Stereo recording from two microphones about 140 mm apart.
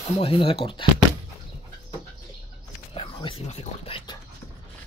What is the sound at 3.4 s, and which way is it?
Speech, 45° left (ahead or behind).